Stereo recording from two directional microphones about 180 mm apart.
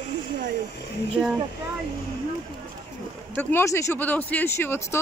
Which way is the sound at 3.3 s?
15° left (ahead or behind).